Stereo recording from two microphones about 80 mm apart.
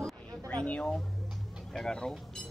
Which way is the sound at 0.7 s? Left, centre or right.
Centre.